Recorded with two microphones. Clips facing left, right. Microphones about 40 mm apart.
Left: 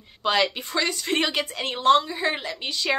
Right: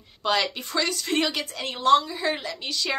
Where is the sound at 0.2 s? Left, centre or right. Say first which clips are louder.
Left 2 dB; centre.